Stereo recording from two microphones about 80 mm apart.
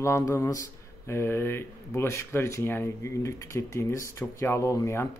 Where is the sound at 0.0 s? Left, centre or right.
Left.